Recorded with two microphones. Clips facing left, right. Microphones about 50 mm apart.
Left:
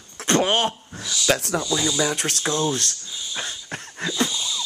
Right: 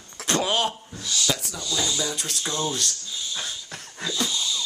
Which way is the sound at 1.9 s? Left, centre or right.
Left.